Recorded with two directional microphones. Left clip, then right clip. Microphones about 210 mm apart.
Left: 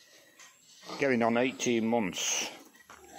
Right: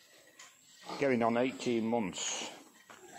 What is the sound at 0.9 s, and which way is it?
Speech, 15° left (ahead or behind).